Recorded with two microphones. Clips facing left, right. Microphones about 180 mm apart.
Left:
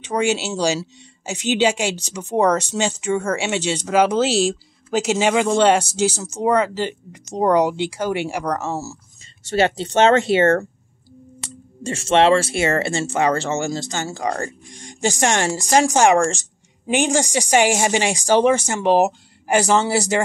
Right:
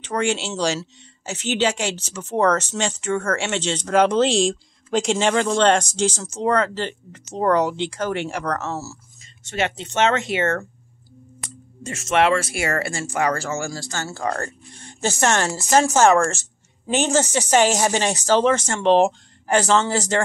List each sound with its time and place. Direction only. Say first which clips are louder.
0.0 s speech: left 3 dB; 10° left (ahead or behind)
9.4 s speech: left 6 dB; 35° left (ahead or behind)
11.8 s speech: left 3 dB; 30° left (ahead or behind); by 20.2 s 10° left (ahead or behind)